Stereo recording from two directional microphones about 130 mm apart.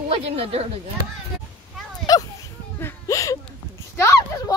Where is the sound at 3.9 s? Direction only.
20° left (ahead or behind).